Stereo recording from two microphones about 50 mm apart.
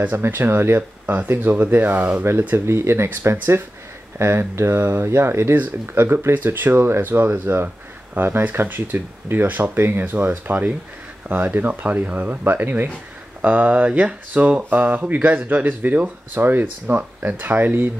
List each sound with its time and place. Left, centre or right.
0.2 s speech: right
2.5 s speech: right
6.3 s speech: right
10.0 s speech: right